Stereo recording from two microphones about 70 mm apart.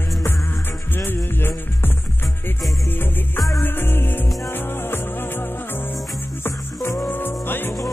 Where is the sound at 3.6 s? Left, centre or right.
Left.